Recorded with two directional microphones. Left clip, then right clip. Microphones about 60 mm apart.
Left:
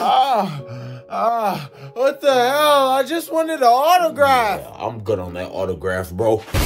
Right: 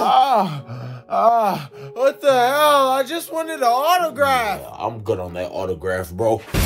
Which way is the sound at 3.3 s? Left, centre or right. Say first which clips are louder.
Left 4 dB; left.